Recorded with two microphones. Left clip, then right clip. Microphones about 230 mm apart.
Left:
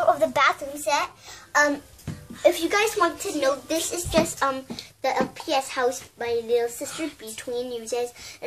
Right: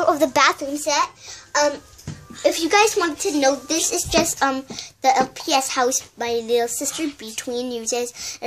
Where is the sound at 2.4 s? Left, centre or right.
Right.